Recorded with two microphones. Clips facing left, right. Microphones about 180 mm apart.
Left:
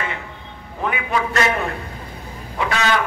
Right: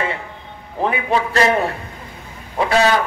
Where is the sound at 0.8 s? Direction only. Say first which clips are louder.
Right 3 dB; 30° right (ahead or behind).